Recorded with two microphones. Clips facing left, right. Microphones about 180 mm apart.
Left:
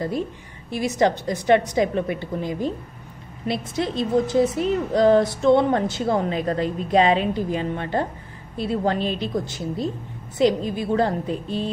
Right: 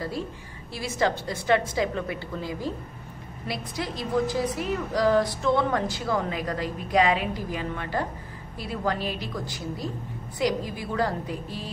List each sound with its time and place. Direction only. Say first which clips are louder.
0.7 s a woman's voice: left 6 dB; 20° left (ahead or behind)